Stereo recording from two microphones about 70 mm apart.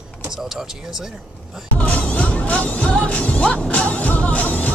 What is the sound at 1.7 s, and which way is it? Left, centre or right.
Speech, centre.